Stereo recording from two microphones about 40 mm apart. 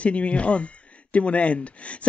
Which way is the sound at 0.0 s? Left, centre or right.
Left.